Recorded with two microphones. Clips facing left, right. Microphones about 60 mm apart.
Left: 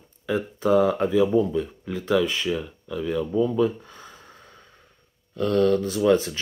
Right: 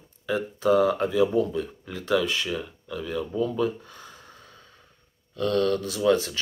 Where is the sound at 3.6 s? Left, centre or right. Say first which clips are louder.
Left 4 dB; left.